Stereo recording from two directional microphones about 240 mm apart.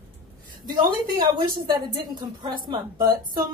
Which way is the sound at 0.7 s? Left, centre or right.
Centre.